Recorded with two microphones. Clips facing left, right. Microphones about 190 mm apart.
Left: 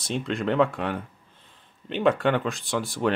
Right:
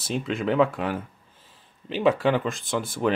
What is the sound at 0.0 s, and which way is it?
Speech, centre (ahead or behind).